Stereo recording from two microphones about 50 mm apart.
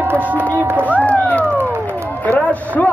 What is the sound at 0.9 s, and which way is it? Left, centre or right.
A man's voice, left.